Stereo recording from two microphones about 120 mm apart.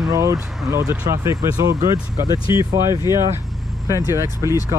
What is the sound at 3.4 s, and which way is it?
Vehicle, centre (ahead or behind).